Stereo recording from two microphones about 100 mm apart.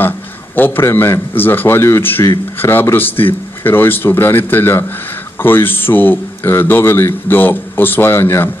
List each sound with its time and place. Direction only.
0.6 s a man's voice: 20° left (ahead or behind)